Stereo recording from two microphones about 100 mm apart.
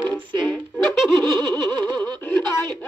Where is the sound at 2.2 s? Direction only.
15° left (ahead or behind).